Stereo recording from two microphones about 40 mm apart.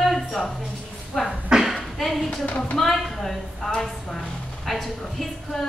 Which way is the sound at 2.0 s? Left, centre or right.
Centre.